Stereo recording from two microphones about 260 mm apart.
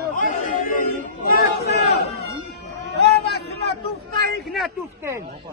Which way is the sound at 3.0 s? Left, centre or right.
Left.